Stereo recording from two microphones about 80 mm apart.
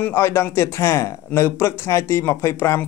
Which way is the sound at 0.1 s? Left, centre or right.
Left.